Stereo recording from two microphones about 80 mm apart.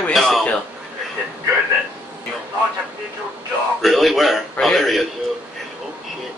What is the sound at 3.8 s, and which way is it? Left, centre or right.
A man's voice, centre.